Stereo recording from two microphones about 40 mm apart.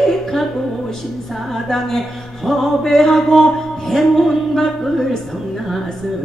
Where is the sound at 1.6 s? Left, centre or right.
Centre.